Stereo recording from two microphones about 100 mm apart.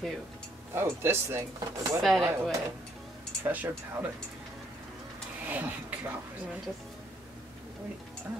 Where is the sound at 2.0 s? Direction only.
Centre (ahead or behind).